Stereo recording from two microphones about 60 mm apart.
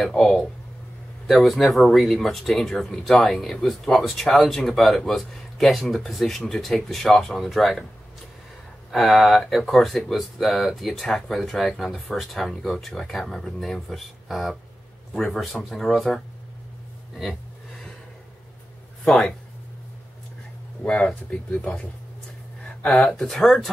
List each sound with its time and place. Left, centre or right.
0.0 s speech: centre
8.9 s speech: centre
20.8 s speech: centre
22.8 s speech: left
23.0 s speech: centre